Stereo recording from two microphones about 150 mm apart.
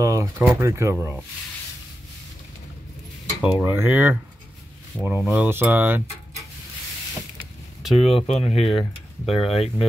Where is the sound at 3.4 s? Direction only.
15° right (ahead or behind).